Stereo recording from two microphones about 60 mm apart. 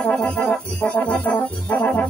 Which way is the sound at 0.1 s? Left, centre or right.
Left.